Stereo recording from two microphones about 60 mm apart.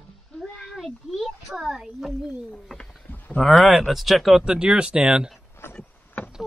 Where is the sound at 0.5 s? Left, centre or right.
Centre.